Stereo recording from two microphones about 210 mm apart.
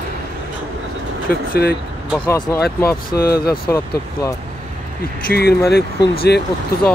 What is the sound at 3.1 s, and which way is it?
Speech, 45° left (ahead or behind).